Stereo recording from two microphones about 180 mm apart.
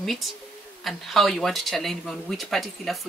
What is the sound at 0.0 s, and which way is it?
Speech, centre (ahead or behind).